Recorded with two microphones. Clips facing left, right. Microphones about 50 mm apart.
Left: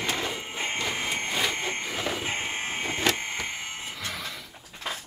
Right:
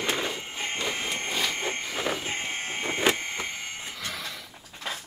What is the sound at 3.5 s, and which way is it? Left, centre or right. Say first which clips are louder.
Music: left 1 dB; centre.